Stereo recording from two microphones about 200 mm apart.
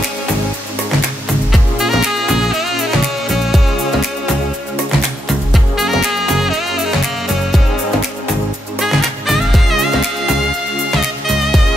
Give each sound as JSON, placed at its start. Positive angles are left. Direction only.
{"t": 1.5, "sound": "music", "side_deg": 0}
{"t": 5.5, "sound": "music", "side_deg": 0}
{"t": 8.7, "sound": "music", "side_deg": 0}